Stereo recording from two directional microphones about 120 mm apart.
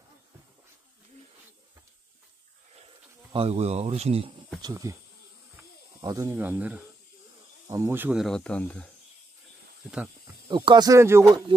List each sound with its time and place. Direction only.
3.3 s speech: 60° right (ahead or behind)
4.6 s speech: 30° right (ahead or behind)
5.9 s speech: 30° right (ahead or behind)
6.3 s speech: 15° right (ahead or behind)
7.6 s speech: 30° right (ahead or behind)
7.9 s speech: 15° right (ahead or behind)
8.2 s speech: 5° left (ahead or behind)
10.5 s speech: 40° right (ahead or behind)
11.0 s speech: 20° right (ahead or behind)